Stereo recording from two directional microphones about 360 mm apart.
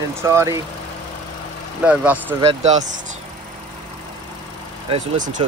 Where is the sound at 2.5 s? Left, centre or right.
Centre.